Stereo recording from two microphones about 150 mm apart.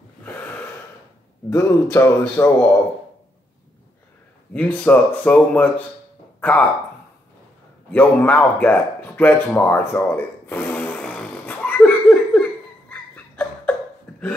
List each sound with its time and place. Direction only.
1.5 s speech: 15° left (ahead or behind)
4.6 s speech: 10° left (ahead or behind)
7.9 s speech: 10° left (ahead or behind)
12.9 s a sound: 10° left (ahead or behind)